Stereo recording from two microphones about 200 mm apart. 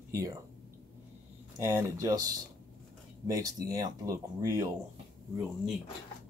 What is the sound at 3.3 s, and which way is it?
Speech, 15° right (ahead or behind).